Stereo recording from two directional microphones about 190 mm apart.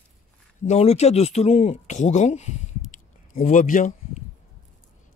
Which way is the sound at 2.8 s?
45° left (ahead or behind).